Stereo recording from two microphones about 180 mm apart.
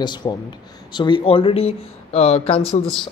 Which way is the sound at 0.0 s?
25° left (ahead or behind).